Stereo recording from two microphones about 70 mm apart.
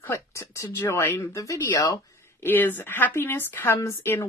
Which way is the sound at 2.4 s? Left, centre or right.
Left.